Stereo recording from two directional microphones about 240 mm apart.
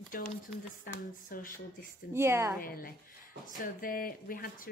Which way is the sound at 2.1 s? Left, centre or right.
Centre.